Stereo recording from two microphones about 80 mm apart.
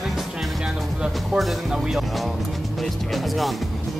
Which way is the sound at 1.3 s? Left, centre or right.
Centre.